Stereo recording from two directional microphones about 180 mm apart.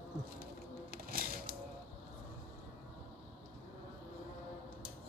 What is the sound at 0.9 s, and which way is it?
Music, 55° right (ahead or behind).